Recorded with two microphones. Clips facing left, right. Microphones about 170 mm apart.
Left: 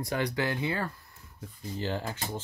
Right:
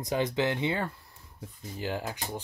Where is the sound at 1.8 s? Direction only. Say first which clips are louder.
Even; 10° right (ahead or behind).